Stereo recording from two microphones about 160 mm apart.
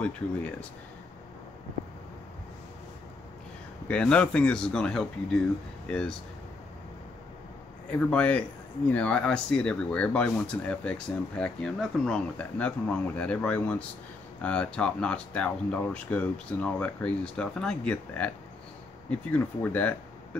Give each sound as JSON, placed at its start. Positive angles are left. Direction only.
{"t": 0.0, "sound": "speech", "side_deg": 10}
{"t": 3.9, "sound": "speech", "side_deg": 5}
{"t": 8.0, "sound": "speech", "side_deg": 10}